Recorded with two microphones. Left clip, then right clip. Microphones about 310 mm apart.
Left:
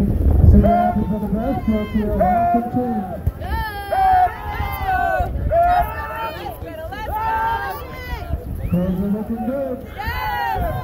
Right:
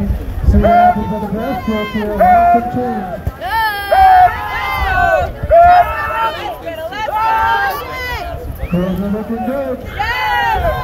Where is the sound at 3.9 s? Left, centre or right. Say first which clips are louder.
Right 8 dB; right.